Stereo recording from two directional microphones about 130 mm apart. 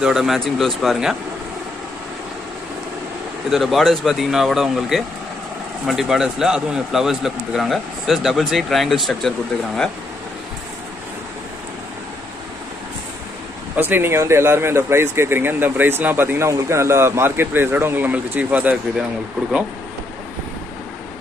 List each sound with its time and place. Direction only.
0.0 s a man's voice: 5° right (ahead or behind)
3.4 s a man's voice: centre (ahead or behind)
13.7 s speech: 15° right (ahead or behind)